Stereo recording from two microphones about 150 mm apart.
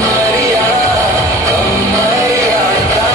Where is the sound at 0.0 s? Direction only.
20° right (ahead or behind).